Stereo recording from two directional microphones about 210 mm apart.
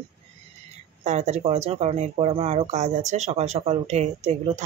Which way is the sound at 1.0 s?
30° right (ahead or behind).